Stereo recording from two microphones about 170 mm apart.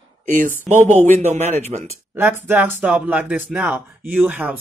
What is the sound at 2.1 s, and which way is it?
Speech, 10° right (ahead or behind).